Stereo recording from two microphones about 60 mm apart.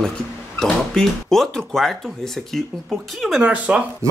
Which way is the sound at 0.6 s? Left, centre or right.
Centre.